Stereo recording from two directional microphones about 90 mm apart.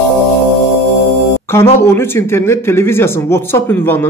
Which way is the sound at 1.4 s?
25° left (ahead or behind).